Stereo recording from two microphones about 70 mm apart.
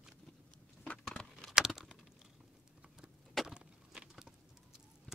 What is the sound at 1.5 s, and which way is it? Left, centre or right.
Typing, centre.